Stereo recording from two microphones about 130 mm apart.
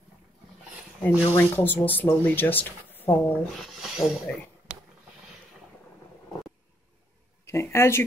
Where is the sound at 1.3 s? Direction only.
15° left (ahead or behind).